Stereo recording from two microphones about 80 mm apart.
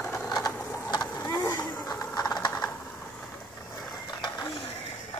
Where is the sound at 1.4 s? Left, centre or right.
Left.